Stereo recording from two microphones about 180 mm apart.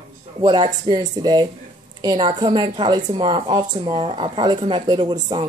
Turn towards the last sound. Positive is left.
turn(degrees=-25)  # may be behind; listen again after turning